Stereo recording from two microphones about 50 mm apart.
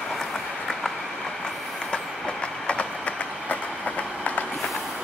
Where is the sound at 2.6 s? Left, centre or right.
Left.